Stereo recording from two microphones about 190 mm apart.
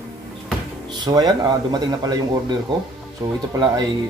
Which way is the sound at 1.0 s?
20° right (ahead or behind).